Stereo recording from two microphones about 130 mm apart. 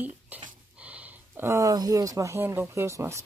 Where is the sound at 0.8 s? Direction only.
10° right (ahead or behind).